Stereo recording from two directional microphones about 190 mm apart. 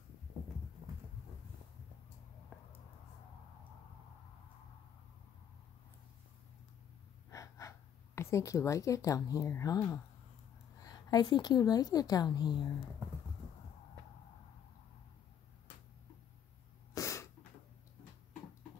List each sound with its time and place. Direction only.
7.2 s a woman's voice: 15° left (ahead or behind)
16.9 s sneeze: 15° left (ahead or behind)